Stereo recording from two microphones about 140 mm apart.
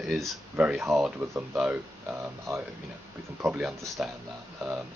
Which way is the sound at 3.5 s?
5° right (ahead or behind).